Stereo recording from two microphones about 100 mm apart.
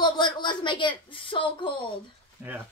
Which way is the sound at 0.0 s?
50° left (ahead or behind).